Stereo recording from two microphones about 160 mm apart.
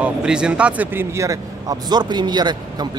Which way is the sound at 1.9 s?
25° right (ahead or behind).